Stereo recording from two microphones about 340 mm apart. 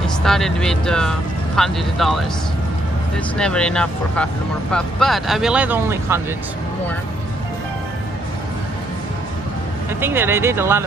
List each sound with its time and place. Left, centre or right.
0.0 s speech: centre
3.3 s speech: centre
9.9 s speech: centre